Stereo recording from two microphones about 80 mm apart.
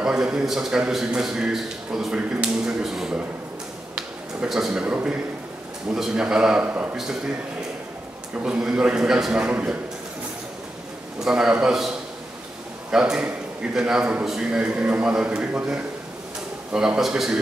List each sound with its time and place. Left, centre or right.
0.0 s a man's voice: centre
4.5 s a man's voice: centre
4.8 s a man's voice: centre
6.6 s a man's voice: centre
8.4 s a man's voice: centre
9.5 s a man's voice: centre
11.2 s a man's voice: centre
12.9 s a man's voice: centre
14.6 s a man's voice: centre